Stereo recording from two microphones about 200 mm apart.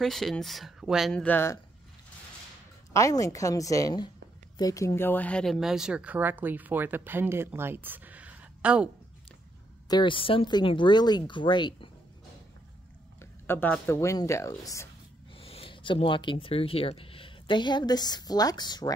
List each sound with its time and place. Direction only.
0.0 s speech: centre (ahead or behind)
2.9 s speech: 15° left (ahead or behind); by 8.9 s 5° right (ahead or behind)
9.8 s speech: 25° left (ahead or behind)
13.2 s speech: 10° left (ahead or behind)
15.3 s speech: 30° left (ahead or behind)